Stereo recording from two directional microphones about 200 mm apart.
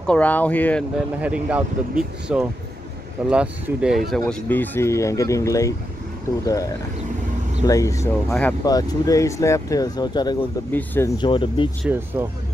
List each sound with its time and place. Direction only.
0.0 s speech: 5° left (ahead or behind)
0.9 s speech: 5° right (ahead or behind); by 11.1 s 10° left (ahead or behind)
11.1 s speech: 25° left (ahead or behind)
11.8 s speech: 10° right (ahead or behind)